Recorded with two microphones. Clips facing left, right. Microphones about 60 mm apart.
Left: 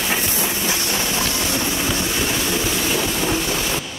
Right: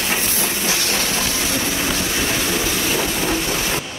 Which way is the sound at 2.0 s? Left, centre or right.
Centre.